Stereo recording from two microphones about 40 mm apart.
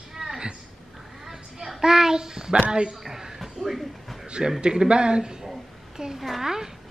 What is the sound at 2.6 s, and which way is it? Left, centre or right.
Speech, right.